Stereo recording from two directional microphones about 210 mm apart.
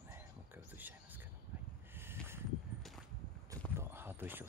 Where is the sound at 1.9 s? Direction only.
10° right (ahead or behind).